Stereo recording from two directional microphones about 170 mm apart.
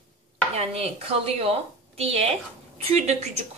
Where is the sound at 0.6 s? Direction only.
35° right (ahead or behind).